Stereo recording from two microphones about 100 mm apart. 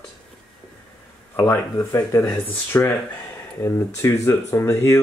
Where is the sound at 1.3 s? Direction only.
30° left (ahead or behind).